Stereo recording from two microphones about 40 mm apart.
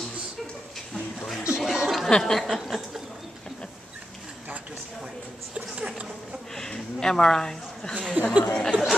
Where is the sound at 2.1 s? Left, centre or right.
Centre.